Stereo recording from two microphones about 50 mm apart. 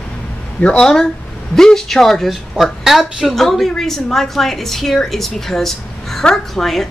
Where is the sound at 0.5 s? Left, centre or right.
Left.